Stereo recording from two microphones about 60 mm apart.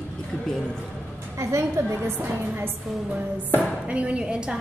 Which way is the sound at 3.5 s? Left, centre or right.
Right.